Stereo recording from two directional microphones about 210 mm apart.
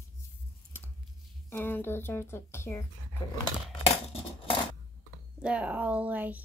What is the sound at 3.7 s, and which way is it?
Coin, 30° left (ahead or behind).